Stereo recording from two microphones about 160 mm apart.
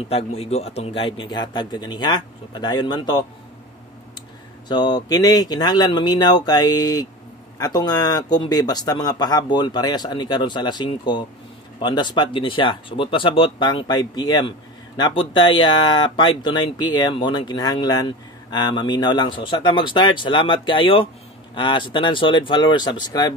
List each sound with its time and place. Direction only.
0.1 s speech: 40° left (ahead or behind)
4.6 s speech: 25° left (ahead or behind)